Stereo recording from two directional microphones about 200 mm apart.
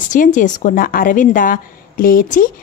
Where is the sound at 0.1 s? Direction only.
40° left (ahead or behind).